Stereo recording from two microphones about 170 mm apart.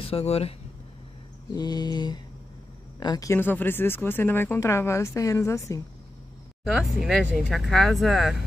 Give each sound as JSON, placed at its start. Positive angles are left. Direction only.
{"t": 0.0, "sound": "speech", "side_deg": 35}
{"t": 1.5, "sound": "mantra", "side_deg": 25}
{"t": 3.0, "sound": "speech", "side_deg": 20}
{"t": 6.6, "sound": "speech", "side_deg": 0}